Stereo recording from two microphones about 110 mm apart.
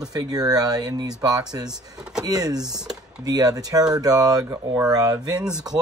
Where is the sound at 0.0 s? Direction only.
35° right (ahead or behind).